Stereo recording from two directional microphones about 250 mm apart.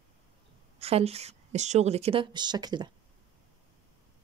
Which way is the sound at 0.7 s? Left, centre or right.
Right.